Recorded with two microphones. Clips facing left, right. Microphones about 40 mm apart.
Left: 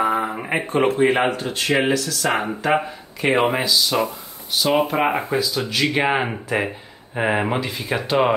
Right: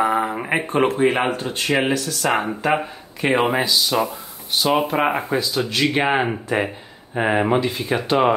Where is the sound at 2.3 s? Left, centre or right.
Centre.